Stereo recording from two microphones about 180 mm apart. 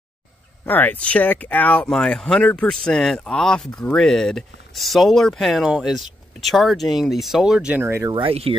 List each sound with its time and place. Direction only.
0.7 s speech: 10° left (ahead or behind); by 8.2 s 15° right (ahead or behind)
8.2 s speech: 30° right (ahead or behind)